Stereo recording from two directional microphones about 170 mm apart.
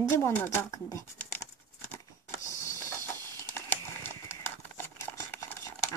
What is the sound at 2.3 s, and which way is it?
Printer, 15° left (ahead or behind).